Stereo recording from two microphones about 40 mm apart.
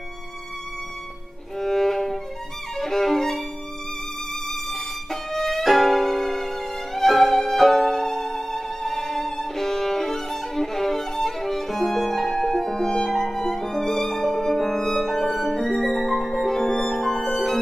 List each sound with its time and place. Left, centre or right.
1.6 s music: centre
2.8 s violin: centre
4.5 s violin: centre